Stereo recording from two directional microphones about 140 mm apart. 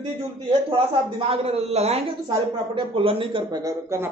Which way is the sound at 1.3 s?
45° right (ahead or behind).